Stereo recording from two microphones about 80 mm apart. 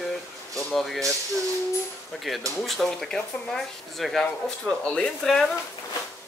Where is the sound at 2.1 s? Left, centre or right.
Centre.